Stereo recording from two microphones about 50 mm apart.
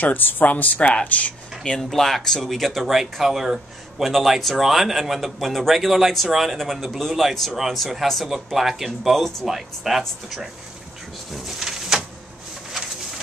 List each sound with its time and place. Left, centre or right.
0.0 s speech: left
0.5 s speech: left
1.8 s speech: centre
11.3 s a sound: centre